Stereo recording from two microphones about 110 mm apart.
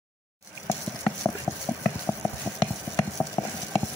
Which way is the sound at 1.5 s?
30° left (ahead or behind).